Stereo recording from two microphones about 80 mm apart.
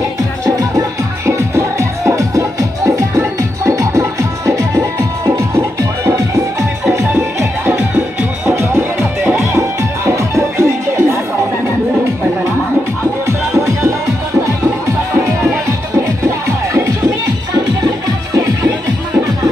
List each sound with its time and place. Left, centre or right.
0.6 s music: right
13.5 s music: right
16.0 s music: right